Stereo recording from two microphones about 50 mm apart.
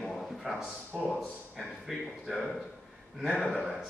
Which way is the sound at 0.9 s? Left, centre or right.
Centre.